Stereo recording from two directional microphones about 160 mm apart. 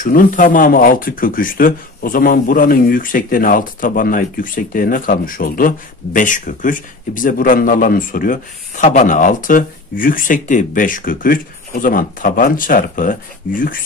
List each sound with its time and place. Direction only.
0.0 s speech: 55° left (ahead or behind)